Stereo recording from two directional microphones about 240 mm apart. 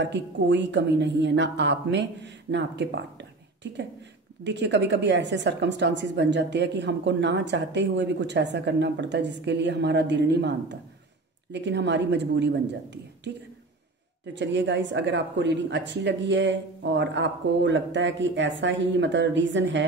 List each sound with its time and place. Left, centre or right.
0.0 s a woman's voice: right
4.5 s a woman's voice: right
14.3 s a woman's voice: right